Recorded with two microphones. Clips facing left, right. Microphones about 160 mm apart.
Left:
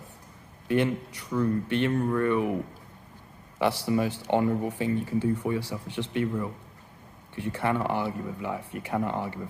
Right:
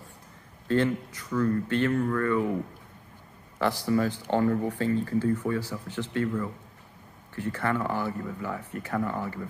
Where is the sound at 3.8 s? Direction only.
15° left (ahead or behind).